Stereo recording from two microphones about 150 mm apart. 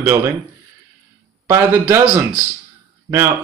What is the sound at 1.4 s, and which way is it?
Speech, 20° right (ahead or behind).